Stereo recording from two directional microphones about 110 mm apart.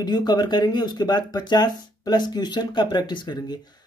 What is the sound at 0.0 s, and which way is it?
Speech, 40° left (ahead or behind).